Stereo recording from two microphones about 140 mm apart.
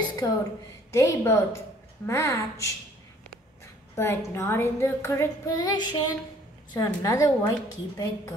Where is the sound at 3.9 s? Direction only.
15° left (ahead or behind).